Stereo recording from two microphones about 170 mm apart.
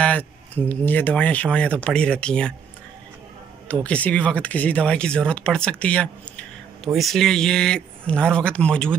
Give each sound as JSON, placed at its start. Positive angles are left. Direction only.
{"t": 0.0, "sound": "speech", "side_deg": 10}
{"t": 3.8, "sound": "speech", "side_deg": 10}